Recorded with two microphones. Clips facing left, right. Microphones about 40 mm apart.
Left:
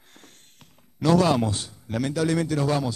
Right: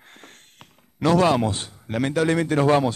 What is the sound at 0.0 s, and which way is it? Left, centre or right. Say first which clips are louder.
Speech: right 5 dB; right.